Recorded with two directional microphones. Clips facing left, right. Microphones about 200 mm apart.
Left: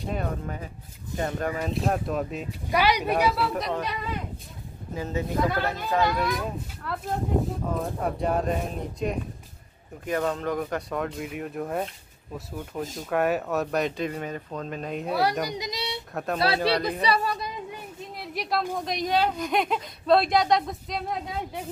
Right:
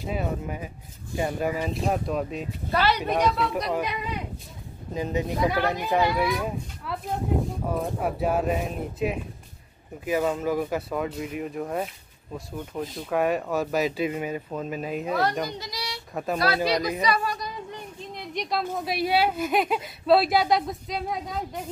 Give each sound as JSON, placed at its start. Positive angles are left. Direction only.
{"t": 0.0, "sound": "a woman's voice", "side_deg": -5}
{"t": 2.7, "sound": "a woman's voice", "side_deg": 15}
{"t": 4.9, "sound": "a woman's voice", "side_deg": -15}
{"t": 12.9, "sound": "a woman's voice", "side_deg": 0}
{"t": 15.0, "sound": "speech", "side_deg": 10}
{"t": 16.1, "sound": "speech", "side_deg": 0}
{"t": 16.3, "sound": "a woman's voice", "side_deg": 30}
{"t": 17.6, "sound": "a sound", "side_deg": 5}
{"t": 18.8, "sound": "a woman's voice", "side_deg": -5}